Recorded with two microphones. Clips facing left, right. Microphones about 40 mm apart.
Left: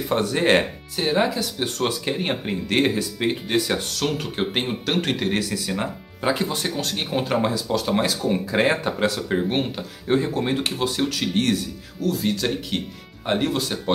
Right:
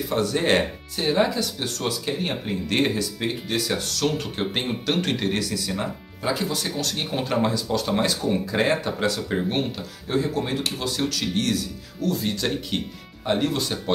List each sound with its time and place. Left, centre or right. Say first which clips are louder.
0.2 s speech: left 1 dB; centre
1.8 s speech: left 2 dB; left
2.6 s speech: left 2 dB; centre
3.0 s speech: left 3 dB; left
10.0 s speech: left 3 dB; left
12.0 s speech: left 2 dB; centre